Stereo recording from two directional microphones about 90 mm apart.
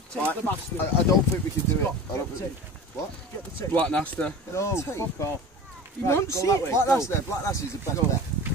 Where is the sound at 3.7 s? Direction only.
15° left (ahead or behind).